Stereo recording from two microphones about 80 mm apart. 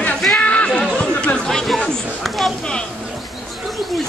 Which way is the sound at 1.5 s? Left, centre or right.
Centre.